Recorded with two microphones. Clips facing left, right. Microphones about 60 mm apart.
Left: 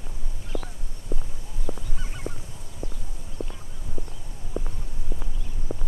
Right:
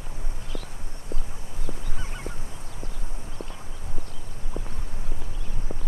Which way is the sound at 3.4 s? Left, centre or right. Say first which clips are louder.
Left 4 dB; right.